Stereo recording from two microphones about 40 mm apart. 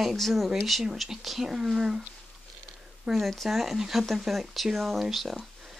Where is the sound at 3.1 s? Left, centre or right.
Centre.